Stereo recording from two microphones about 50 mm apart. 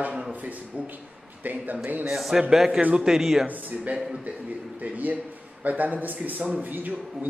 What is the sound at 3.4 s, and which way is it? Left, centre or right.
A man's voice, right.